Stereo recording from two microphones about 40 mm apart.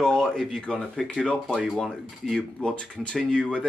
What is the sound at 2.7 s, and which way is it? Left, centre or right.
Speech, left.